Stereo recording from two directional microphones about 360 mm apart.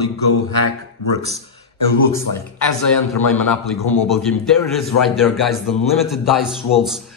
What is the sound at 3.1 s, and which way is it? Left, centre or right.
A man's voice, centre.